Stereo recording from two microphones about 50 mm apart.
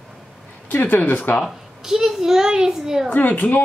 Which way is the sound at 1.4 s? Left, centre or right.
Centre.